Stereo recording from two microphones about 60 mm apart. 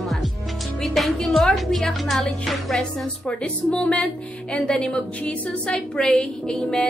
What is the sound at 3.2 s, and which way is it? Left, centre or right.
A woman's voice, centre.